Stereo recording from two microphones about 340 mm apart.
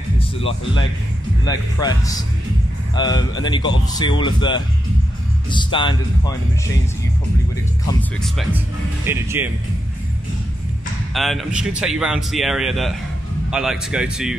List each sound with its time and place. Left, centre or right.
0.4 s speech: centre
7.8 s a man's voice: centre
11.1 s a man's voice: centre